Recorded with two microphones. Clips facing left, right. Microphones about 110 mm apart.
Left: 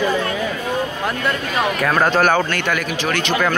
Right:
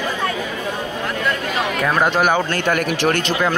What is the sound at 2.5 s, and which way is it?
Speech, 45° right (ahead or behind).